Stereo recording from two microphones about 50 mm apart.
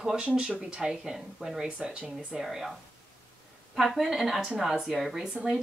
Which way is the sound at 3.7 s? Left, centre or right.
Centre.